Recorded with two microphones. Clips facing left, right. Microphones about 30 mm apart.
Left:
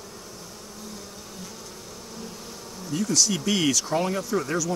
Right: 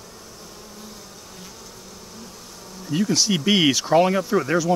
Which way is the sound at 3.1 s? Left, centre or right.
Right.